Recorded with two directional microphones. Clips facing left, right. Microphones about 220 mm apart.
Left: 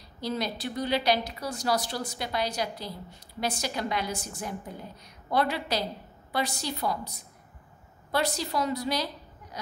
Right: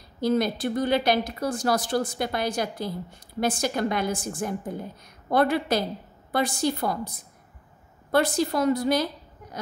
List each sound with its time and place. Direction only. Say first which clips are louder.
0.2 s a woman's voice: right 8 dB; 50° right (ahead or behind)